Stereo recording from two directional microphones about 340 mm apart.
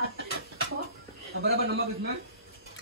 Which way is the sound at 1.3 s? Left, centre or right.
Right.